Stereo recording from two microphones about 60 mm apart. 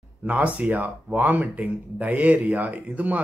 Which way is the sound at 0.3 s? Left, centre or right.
Right.